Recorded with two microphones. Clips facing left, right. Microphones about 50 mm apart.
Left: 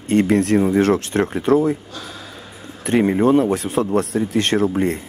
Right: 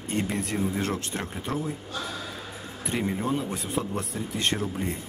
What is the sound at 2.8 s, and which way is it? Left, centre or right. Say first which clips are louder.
Speech: left 13 dB; left.